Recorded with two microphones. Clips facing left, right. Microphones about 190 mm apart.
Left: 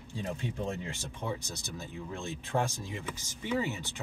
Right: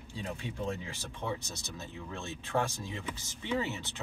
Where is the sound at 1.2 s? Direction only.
15° left (ahead or behind).